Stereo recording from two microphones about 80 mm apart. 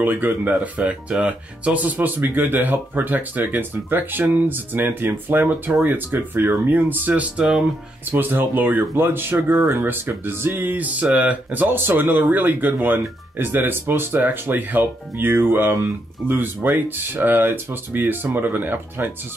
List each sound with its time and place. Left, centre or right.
0.0 s speech: right
8.1 s speech: right